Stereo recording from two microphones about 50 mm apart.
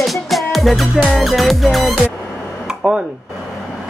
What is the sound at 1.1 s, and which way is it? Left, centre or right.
Speech, centre.